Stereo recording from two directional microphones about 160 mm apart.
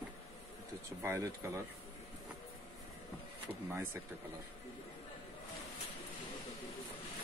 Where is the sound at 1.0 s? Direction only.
15° right (ahead or behind).